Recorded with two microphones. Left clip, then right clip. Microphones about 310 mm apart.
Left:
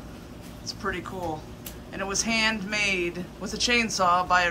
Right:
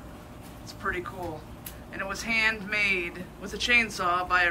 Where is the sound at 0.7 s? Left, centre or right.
Centre.